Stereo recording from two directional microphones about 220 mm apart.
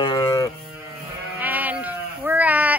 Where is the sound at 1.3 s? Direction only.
10° right (ahead or behind).